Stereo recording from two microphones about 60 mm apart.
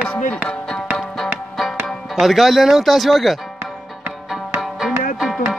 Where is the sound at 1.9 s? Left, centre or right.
Centre.